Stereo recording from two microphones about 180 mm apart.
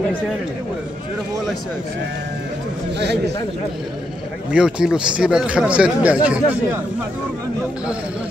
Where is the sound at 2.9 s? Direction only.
70° right (ahead or behind).